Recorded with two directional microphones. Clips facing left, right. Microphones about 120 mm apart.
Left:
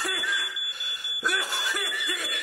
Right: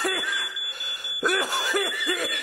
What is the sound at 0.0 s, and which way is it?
Smoke detector, 50° right (ahead or behind).